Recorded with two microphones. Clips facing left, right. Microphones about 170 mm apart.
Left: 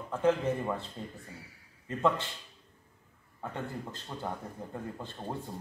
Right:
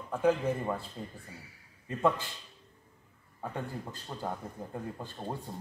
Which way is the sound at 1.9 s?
10° right (ahead or behind).